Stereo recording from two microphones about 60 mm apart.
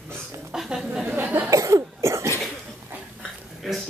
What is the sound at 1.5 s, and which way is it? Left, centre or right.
Cough, right.